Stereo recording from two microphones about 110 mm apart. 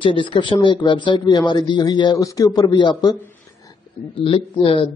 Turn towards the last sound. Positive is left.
turn(degrees=55)  # may be behind; listen again after turning